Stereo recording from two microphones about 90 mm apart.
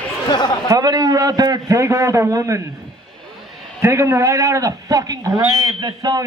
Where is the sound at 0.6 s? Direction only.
45° right (ahead or behind).